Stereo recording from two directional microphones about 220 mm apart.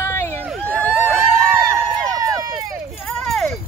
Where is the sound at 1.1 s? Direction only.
10° right (ahead or behind).